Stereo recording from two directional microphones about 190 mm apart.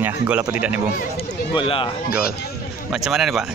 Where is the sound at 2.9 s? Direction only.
Centre (ahead or behind).